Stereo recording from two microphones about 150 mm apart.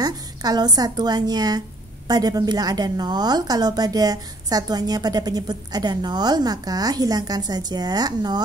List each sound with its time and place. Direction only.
0.0 s a woman's voice: 25° right (ahead or behind)